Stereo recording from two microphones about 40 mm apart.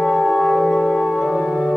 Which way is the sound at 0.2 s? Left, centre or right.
Centre.